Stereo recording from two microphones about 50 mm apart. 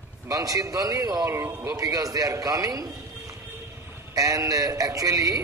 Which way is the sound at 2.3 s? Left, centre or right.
Right.